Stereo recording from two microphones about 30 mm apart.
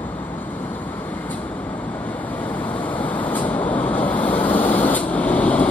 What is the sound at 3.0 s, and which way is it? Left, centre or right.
Vehicle, left.